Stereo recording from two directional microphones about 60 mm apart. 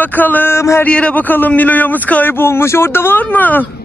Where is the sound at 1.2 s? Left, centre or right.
Left.